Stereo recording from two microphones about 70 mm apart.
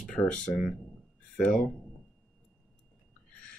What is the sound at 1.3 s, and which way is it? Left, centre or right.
Speech, centre.